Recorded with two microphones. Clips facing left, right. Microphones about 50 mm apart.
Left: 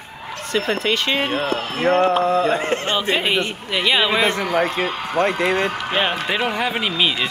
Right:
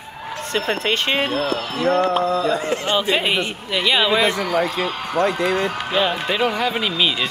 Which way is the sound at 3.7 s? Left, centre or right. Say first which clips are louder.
Right 1 dB; centre.